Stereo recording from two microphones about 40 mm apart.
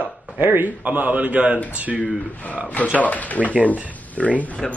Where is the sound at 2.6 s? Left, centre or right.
Left.